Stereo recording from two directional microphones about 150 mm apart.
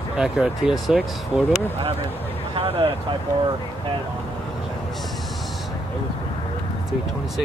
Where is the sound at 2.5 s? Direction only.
35° right (ahead or behind).